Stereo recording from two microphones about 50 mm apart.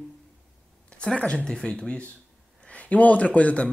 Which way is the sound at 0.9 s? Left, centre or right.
Centre.